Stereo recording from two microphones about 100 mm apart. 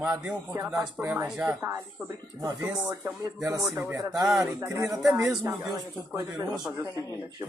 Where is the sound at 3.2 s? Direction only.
30° right (ahead or behind).